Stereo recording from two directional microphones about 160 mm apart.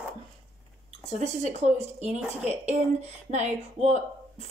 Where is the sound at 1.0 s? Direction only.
45° right (ahead or behind).